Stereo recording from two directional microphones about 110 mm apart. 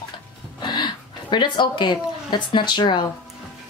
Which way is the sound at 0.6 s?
45° left (ahead or behind).